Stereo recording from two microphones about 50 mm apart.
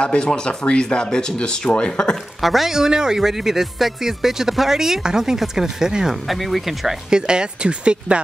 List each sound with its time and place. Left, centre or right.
0.0 s speech: left
2.4 s speech: centre
6.2 s speech: centre
7.1 s speech: centre